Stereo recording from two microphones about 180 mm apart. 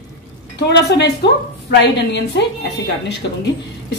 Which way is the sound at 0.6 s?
65° left (ahead or behind).